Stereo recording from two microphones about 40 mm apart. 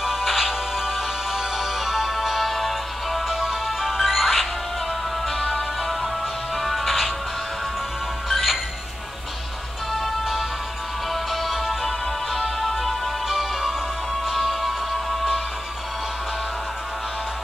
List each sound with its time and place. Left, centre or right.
0.0 s music: centre
6.5 s music: centre
8.3 s music: centre
11.3 s music: centre